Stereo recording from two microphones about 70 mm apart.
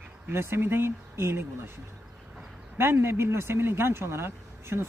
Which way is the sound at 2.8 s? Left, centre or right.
Right.